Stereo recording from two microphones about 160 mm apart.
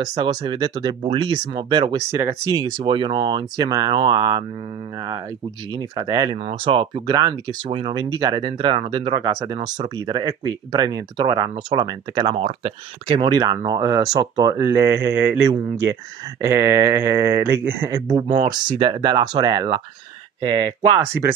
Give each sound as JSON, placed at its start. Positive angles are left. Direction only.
{"t": 0.0, "sound": "speech", "side_deg": -25}
{"t": 5.7, "sound": "speech", "side_deg": -25}
{"t": 13.2, "sound": "speech", "side_deg": -25}